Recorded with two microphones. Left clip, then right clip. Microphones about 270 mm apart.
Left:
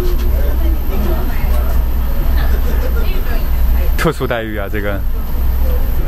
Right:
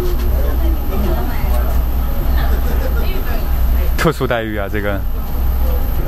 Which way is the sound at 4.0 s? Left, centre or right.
Centre.